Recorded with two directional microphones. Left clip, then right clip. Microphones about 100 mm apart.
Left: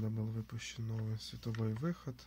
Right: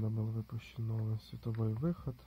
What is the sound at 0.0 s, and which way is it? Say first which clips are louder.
Speech: right 1 dB; 5° left (ahead or behind).